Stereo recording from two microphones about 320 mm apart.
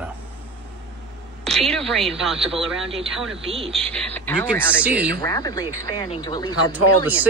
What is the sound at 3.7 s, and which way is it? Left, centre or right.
Speech, centre.